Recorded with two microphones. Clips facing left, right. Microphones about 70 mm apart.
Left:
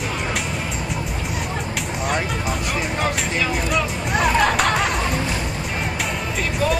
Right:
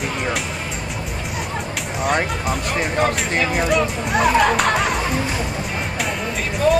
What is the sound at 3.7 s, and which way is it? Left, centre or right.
Speech, centre.